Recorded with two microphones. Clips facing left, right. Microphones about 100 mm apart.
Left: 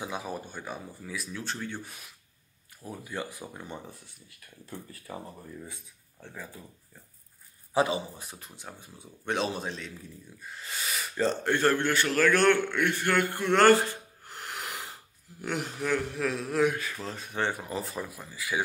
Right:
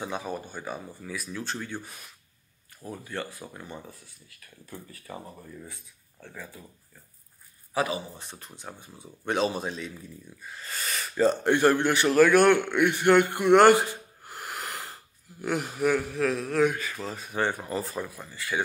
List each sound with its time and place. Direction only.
0.0 s a man's voice: 5° left (ahead or behind)
5.1 s speech: 10° left (ahead or behind)
7.7 s speech: 25° left (ahead or behind)
8.2 s a man's voice: 5° left (ahead or behind)
11.2 s a man's voice: 15° right (ahead or behind)
14.3 s a sound: 5° right (ahead or behind)
15.4 s a man's voice: 5° right (ahead or behind)